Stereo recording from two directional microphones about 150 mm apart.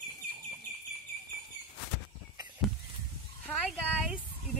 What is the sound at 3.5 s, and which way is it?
Speech, centre (ahead or behind).